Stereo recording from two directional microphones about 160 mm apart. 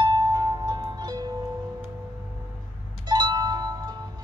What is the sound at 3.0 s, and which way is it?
Music, 25° right (ahead or behind).